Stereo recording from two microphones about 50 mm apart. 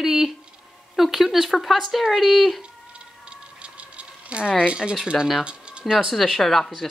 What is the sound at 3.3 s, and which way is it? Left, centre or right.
Rattle, right.